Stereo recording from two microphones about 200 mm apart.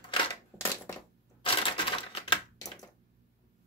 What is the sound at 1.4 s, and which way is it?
Typewriter, 25° left (ahead or behind).